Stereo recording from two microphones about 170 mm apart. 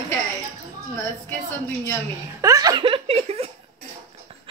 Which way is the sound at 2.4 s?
20° right (ahead or behind).